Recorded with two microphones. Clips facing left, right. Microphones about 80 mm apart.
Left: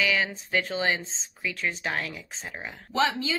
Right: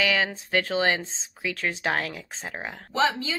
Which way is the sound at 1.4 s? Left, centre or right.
Right.